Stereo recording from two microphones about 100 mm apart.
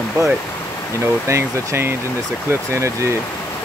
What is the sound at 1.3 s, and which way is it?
Speech, 25° right (ahead or behind).